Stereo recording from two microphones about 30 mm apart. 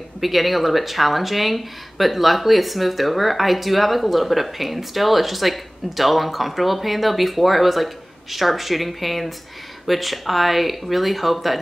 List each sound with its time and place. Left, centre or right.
0.2 s speech: centre